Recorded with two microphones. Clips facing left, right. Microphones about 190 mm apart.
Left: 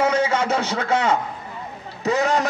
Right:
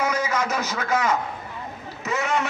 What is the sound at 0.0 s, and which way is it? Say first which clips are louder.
A man's voice: left 5 dB; 30° left (ahead or behind).